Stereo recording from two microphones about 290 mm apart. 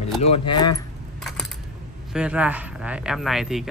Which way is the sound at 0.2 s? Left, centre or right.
Left.